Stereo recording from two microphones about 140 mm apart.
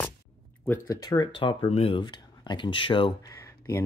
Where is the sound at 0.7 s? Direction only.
25° left (ahead or behind).